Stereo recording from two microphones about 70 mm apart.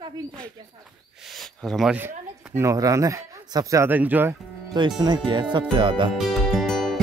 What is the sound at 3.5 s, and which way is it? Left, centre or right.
Speech, right.